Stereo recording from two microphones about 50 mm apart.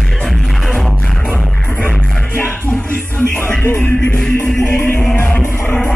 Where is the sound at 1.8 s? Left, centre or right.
Left.